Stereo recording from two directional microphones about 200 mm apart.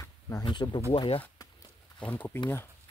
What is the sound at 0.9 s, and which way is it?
Speech, 25° left (ahead or behind).